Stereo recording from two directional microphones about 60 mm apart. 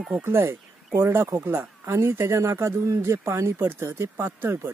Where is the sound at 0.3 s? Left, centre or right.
Right.